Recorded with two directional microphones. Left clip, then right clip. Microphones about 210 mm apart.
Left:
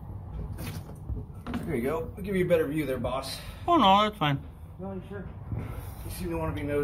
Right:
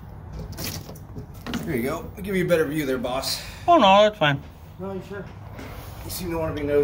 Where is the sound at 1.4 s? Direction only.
55° right (ahead or behind).